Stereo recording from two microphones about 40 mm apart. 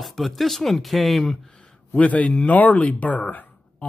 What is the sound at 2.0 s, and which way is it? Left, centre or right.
Speech, left.